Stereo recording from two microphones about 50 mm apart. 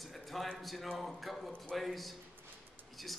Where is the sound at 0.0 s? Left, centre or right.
Centre.